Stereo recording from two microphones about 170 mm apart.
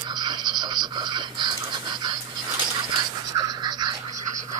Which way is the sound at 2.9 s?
25° right (ahead or behind).